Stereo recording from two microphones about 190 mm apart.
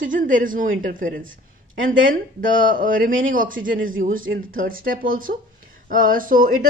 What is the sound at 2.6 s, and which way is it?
A woman's voice, 45° right (ahead or behind).